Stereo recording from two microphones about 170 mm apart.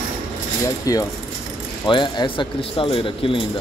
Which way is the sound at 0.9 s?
20° left (ahead or behind).